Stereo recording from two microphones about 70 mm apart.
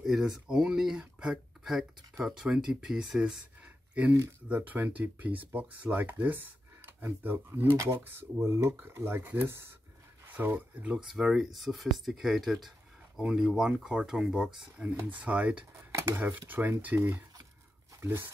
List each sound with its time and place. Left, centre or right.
0.0 s speech: centre
3.6 s a sound: right
4.5 s speech: right
7.7 s speech: right
8.0 s speech: right
10.8 s speech: centre
11.1 s speech: centre; by 16.7 s right
18.0 s speech: right